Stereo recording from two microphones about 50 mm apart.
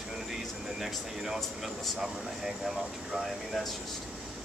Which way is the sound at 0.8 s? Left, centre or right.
Centre.